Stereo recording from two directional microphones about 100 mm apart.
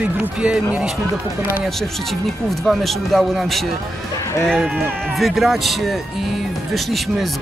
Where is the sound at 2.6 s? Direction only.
Centre (ahead or behind).